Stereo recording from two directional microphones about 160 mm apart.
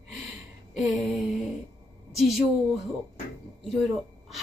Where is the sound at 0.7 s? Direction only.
Centre (ahead or behind).